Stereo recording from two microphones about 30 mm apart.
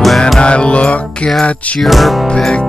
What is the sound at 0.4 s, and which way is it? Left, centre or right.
Music, left.